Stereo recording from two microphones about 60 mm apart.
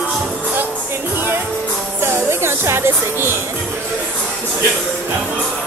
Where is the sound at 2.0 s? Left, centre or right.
Right.